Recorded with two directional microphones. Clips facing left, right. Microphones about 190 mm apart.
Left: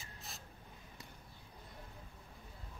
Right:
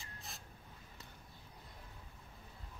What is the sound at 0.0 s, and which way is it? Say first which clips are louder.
Vehicle: even; centre (ahead or behind).